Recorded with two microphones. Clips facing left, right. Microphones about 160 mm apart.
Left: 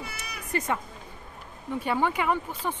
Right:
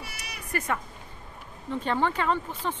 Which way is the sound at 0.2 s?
20° left (ahead or behind).